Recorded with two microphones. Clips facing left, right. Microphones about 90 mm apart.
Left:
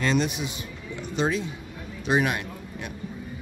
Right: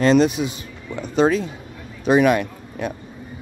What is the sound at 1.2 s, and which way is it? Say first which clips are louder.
Speech: right 8 dB; 90° right.